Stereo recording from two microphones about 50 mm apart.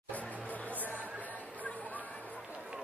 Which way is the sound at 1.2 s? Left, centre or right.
Left.